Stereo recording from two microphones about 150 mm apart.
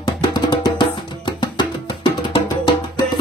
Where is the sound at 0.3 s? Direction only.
30° left (ahead or behind).